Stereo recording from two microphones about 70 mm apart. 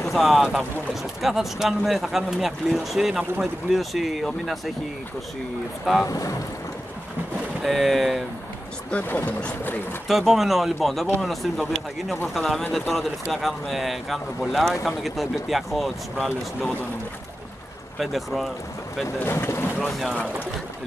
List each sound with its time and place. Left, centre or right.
0.1 s speech: centre
6.0 s speech: left
7.6 s speech: centre
8.9 s speech: left
10.0 s speech: centre
17.9 s speech: centre
19.1 s speech: left
19.8 s speech: centre